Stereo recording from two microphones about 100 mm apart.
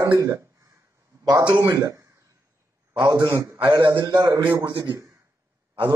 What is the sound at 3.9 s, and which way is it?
Speech, 35° right (ahead or behind).